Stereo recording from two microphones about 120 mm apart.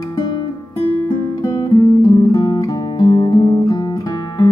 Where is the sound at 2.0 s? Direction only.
35° left (ahead or behind).